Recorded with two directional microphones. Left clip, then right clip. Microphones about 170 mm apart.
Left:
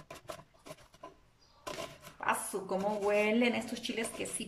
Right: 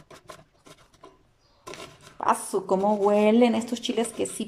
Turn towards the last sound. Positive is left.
turn(degrees=-40)  # may be behind; listen again after turning